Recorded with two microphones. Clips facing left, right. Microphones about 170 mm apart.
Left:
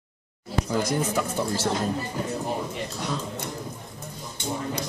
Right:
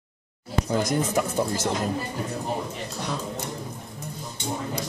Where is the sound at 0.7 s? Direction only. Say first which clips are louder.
Right 1 dB; 20° right (ahead or behind).